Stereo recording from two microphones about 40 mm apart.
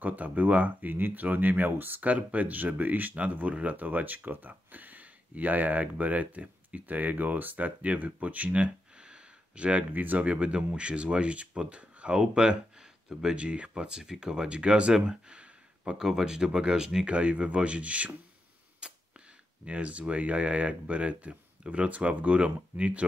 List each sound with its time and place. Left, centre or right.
0.0 s speech: right
2.0 s speech: right
8.9 s speech: right
15.0 s a sound: right
16.0 s speech: centre
16.3 s speech: centre; by 18.1 s right
18.8 s camera: right
19.6 s speech: right